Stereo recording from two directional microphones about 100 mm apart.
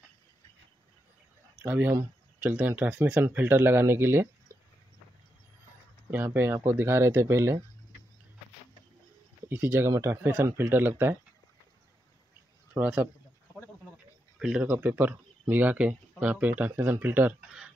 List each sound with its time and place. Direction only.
1.7 s speech: 20° right (ahead or behind)
6.0 s speech: 20° right (ahead or behind)
9.5 s speech: 20° right (ahead or behind)
12.7 s speech: 20° right (ahead or behind)
14.4 s speech: 10° right (ahead or behind)